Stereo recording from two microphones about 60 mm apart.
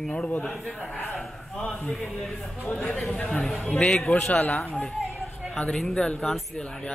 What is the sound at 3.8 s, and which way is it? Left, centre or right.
Speech, centre.